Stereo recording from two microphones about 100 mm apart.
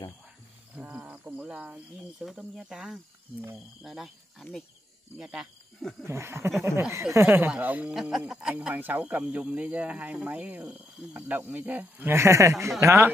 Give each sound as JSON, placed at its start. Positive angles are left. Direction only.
{"t": 0.7, "sound": "cricket", "side_deg": -10}
{"t": 2.2, "sound": "speech", "side_deg": -5}
{"t": 5.8, "sound": "a sound", "side_deg": 5}
{"t": 6.0, "sound": "speech", "side_deg": -25}
{"t": 7.9, "sound": "speech", "side_deg": 0}